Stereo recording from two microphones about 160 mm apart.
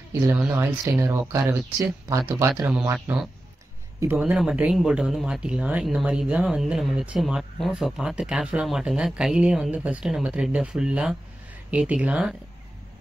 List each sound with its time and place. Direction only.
0.6 s speech: 15° right (ahead or behind)